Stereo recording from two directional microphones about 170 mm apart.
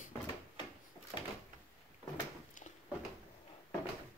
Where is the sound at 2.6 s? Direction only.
50° left (ahead or behind).